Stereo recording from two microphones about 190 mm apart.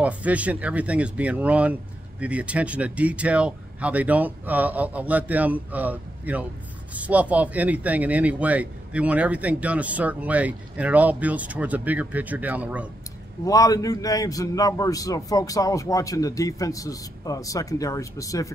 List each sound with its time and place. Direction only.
0.0 s speech: 5° right (ahead or behind)
13.5 s a man's voice: 20° left (ahead or behind)